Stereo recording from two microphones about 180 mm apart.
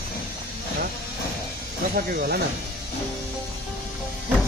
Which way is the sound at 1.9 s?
55° right (ahead or behind).